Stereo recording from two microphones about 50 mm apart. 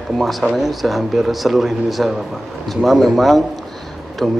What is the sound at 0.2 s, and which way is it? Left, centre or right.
A man's voice, centre.